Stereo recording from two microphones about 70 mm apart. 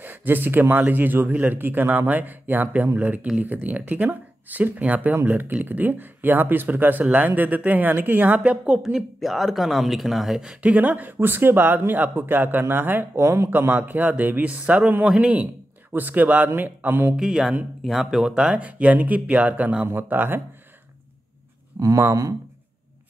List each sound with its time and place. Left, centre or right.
0.0 s speech: right
13.5 s speech: right
17.2 s speech: centre; by 20.4 s right
21.7 s speech: right